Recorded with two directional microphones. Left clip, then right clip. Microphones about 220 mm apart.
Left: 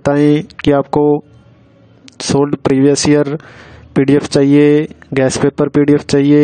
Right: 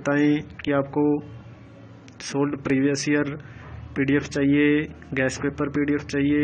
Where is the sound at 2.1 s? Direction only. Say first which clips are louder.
Left 12 dB; 60° left (ahead or behind).